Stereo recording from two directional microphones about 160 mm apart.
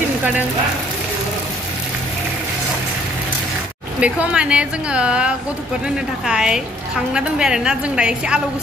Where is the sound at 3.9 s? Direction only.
5° right (ahead or behind).